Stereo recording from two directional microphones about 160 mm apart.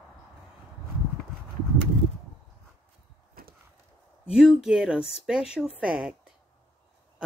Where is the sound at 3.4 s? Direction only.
70° right (ahead or behind).